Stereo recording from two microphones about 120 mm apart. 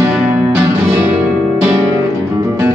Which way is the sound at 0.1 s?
15° right (ahead or behind).